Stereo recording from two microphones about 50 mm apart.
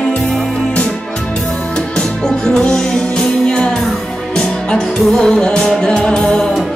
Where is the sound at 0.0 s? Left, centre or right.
Centre.